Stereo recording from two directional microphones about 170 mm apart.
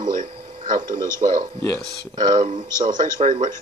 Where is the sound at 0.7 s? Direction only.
55° right (ahead or behind).